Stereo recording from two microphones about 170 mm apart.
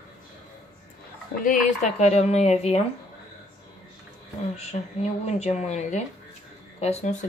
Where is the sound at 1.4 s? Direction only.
50° left (ahead or behind).